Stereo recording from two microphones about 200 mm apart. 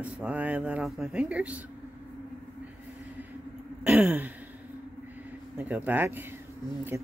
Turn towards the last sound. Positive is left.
turn(degrees=-15)  # may be behind; listen again after turning